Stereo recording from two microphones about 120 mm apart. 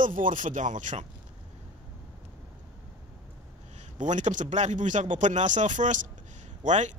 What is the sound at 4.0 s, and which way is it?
Speech, 90° right.